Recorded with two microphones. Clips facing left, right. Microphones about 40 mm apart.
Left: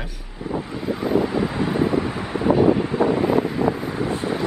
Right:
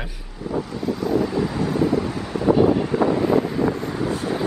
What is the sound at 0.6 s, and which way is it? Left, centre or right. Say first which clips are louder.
Wind: even; left.